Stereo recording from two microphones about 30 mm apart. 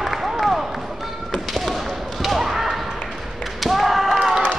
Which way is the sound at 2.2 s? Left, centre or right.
Centre.